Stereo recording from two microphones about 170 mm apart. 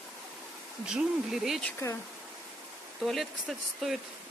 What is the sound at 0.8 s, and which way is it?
Speech, 5° right (ahead or behind).